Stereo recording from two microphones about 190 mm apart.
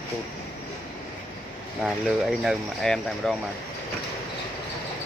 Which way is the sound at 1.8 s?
Centre (ahead or behind).